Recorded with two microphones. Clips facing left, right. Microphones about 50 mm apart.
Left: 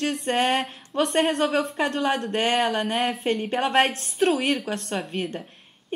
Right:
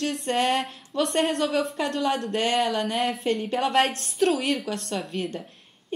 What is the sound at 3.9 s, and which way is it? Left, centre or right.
A woman's voice, left.